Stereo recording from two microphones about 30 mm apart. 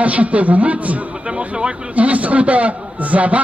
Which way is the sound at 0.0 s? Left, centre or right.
Right.